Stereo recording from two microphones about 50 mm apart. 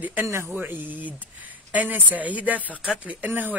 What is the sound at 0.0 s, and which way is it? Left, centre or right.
Speech, right.